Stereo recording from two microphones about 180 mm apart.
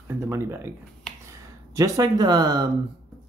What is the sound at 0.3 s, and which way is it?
Speech, 15° right (ahead or behind).